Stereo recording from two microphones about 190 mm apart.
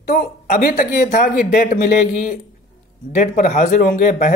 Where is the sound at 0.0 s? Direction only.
50° left (ahead or behind).